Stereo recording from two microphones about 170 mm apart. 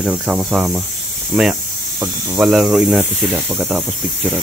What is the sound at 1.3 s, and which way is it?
Snake, centre (ahead or behind).